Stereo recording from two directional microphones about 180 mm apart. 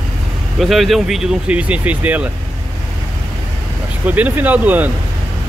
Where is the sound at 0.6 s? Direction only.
Centre (ahead or behind).